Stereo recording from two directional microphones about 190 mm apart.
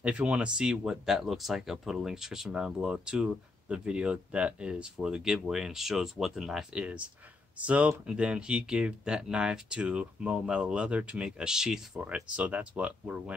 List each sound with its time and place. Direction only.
0.0 s speech: 5° right (ahead or behind)